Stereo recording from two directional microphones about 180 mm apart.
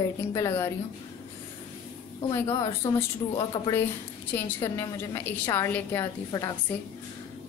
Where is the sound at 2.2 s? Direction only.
20° left (ahead or behind).